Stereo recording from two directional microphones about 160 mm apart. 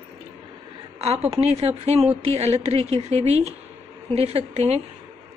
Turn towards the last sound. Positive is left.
turn(degrees=-40)  # may be behind; listen again after turning